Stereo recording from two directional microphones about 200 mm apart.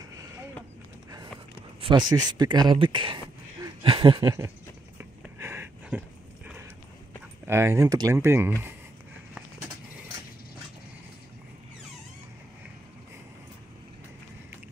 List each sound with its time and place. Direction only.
1.8 s speech: 25° right (ahead or behind)
3.6 s a sound: 25° right (ahead or behind); by 6.6 s 5° right (ahead or behind)
7.4 s speech: 15° right (ahead or behind)